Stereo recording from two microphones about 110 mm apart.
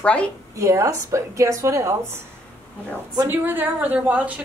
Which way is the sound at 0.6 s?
30° right (ahead or behind).